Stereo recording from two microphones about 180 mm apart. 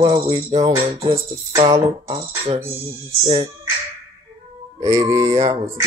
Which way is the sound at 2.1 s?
30° right (ahead or behind).